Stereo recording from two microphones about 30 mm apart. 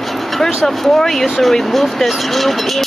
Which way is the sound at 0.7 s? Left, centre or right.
Centre.